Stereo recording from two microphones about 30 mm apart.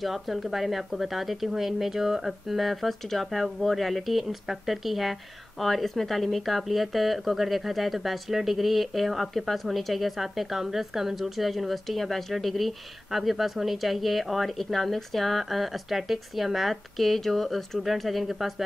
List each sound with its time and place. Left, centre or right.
0.0 s a woman's voice: centre